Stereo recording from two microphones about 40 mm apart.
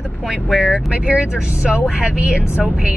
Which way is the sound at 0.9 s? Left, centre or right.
Right.